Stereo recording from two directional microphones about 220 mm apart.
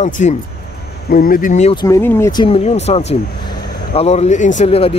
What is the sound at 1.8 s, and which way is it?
Speech, 10° left (ahead or behind).